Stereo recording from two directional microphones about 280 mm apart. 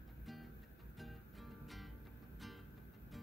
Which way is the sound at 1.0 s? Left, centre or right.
Centre.